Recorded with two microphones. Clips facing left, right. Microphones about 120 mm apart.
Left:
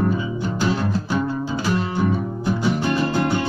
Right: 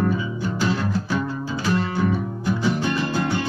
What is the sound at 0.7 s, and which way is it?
Music, 20° left (ahead or behind).